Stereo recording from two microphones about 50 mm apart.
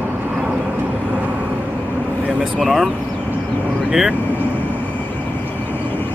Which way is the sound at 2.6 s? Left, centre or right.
Centre.